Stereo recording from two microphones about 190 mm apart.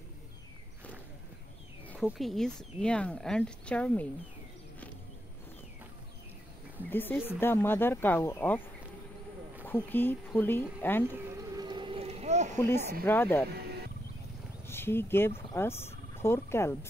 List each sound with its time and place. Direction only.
2.0 s speech: centre (ahead or behind)
6.9 s speech: 10° left (ahead or behind)
9.7 s speech: 10° left (ahead or behind)
11.5 s a sound: 25° right (ahead or behind)
12.5 s speech: 10° left (ahead or behind)
14.7 s speech: 10° left (ahead or behind)